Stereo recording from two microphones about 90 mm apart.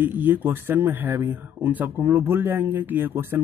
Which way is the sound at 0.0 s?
25° right (ahead or behind).